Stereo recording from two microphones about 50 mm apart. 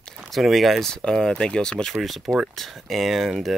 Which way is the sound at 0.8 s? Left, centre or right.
Centre.